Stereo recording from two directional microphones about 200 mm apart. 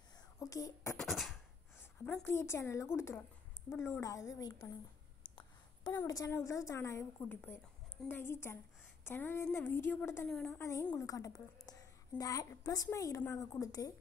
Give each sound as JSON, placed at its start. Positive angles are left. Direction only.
{"t": 0.4, "sound": "a woman's voice", "side_deg": 15}
{"t": 0.9, "sound": "beatboxing", "side_deg": 0}
{"t": 1.8, "sound": "a woman's voice", "side_deg": 10}
{"t": 5.2, "sound": "a sound", "side_deg": 25}
{"t": 5.9, "sound": "a woman's voice", "side_deg": 15}